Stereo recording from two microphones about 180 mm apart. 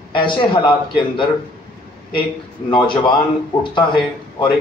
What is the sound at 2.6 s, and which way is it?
Speech, 25° left (ahead or behind).